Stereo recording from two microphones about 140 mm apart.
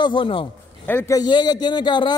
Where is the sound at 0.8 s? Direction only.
15° left (ahead or behind).